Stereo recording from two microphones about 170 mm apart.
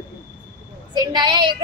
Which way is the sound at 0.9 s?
25° right (ahead or behind).